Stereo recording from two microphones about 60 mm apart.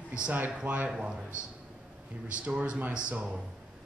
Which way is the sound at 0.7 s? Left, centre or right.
Centre.